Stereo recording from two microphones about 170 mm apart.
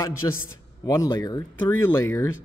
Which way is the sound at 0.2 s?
20° left (ahead or behind).